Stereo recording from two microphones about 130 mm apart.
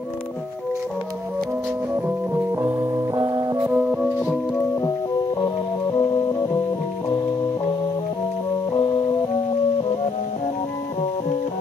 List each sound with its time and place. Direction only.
2.0 s organ: 15° right (ahead or behind)
3.6 s music: 5° right (ahead or behind)
5.4 s music: 30° left (ahead or behind)